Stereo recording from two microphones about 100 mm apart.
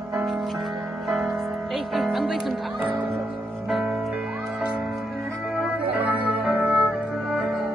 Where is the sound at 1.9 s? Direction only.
Centre (ahead or behind).